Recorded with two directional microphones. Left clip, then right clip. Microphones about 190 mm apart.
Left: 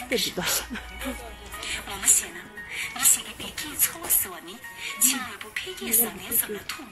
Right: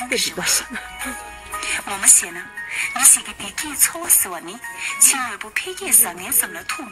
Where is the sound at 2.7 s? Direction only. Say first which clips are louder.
Right 7 dB; 35° right (ahead or behind).